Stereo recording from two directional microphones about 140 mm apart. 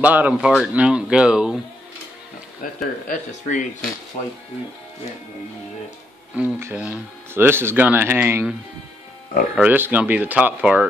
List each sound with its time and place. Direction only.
0.0 s speech: 10° right (ahead or behind)
2.6 s speech: 80° left
3.1 s speech: 70° left (ahead or behind)
6.3 s speech: 10° right (ahead or behind)
9.6 s speech: 15° right (ahead or behind)